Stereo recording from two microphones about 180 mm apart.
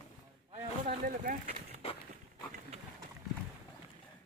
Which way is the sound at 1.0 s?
45° right (ahead or behind).